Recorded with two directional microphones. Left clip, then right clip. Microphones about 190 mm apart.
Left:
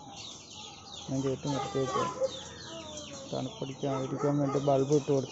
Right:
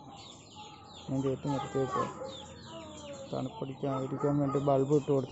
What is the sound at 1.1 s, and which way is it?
Speech, 5° left (ahead or behind).